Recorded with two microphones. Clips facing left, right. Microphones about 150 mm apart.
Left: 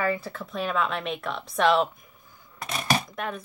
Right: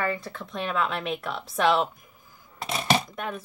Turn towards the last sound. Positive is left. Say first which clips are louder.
# left 1 dB
turn(degrees=0)  # may be behind; listen again after turning